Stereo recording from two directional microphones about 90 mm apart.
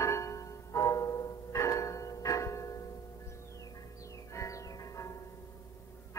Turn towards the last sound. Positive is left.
turn(degrees=40)  # may be behind; listen again after turning